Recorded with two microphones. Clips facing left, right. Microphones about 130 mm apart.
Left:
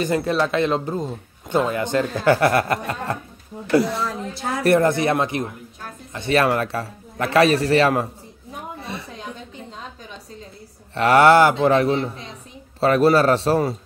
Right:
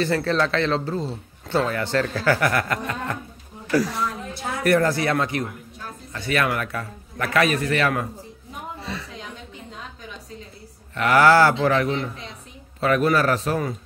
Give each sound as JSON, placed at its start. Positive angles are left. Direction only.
{"t": 0.0, "sound": "a man's voice", "side_deg": 15}
{"t": 11.0, "sound": "a man's voice", "side_deg": 25}